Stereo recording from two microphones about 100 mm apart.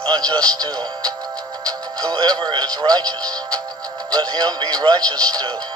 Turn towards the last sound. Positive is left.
turn(degrees=-40)  # may be behind; listen again after turning